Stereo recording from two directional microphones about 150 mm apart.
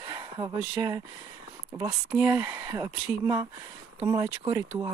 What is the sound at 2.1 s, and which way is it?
Speech, 15° right (ahead or behind).